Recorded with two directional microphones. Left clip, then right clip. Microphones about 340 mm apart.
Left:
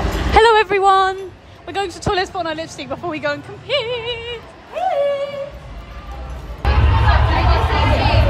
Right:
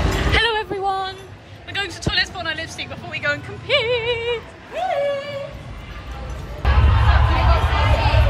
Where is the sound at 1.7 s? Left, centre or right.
Centre.